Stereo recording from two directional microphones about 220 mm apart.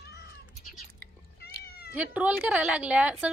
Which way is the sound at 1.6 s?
45° left (ahead or behind).